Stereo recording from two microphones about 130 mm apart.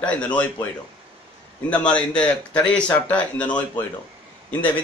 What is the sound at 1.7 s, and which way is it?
A man's voice, 10° left (ahead or behind).